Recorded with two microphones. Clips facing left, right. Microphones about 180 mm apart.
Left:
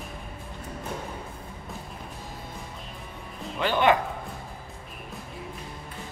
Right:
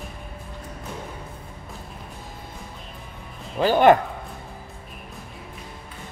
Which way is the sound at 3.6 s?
45° right (ahead or behind).